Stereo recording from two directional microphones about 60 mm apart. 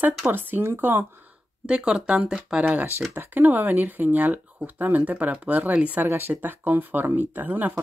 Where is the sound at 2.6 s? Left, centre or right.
Right.